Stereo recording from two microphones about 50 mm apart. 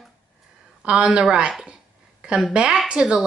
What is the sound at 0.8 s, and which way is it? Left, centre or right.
Speech, centre.